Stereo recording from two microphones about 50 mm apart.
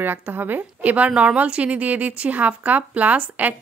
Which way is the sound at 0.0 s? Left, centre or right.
Right.